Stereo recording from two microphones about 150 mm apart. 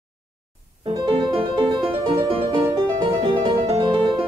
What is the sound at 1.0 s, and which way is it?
Music, 35° right (ahead or behind).